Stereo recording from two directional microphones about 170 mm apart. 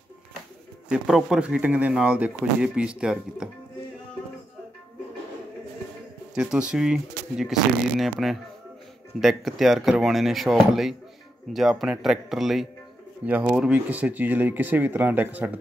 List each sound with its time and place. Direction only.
0.8 s speech: 5° right (ahead or behind)
6.3 s speech: 5° right (ahead or behind)